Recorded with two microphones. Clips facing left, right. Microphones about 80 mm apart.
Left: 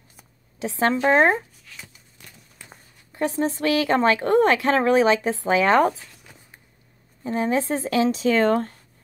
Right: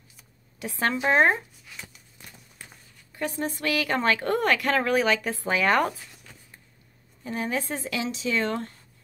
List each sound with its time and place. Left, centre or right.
0.6 s speech: left
1.7 s a sound: centre
2.7 s speech: left
7.2 s speech: left